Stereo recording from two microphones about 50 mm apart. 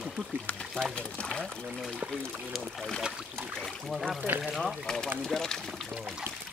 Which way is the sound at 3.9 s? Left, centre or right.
Centre.